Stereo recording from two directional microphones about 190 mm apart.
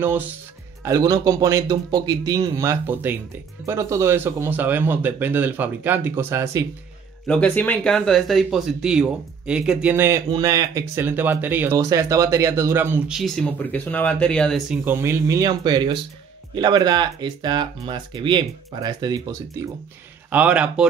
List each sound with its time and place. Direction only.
0.8 s speech: 15° right (ahead or behind)
7.2 s speech: 5° left (ahead or behind); by 13.2 s 10° right (ahead or behind)
13.2 s speech: 5° left (ahead or behind)
14.9 s speech: 15° right (ahead or behind)
20.2 s speech: 10° right (ahead or behind)